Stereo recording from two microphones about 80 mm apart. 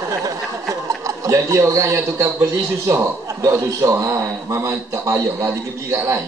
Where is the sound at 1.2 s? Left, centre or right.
Right.